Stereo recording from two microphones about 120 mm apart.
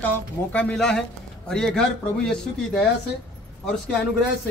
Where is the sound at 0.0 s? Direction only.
15° left (ahead or behind).